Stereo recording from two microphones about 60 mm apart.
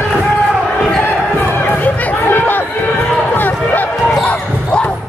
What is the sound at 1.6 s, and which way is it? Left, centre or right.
Chatter, left.